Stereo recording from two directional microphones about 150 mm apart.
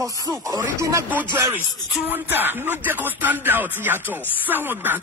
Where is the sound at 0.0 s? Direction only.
20° right (ahead or behind).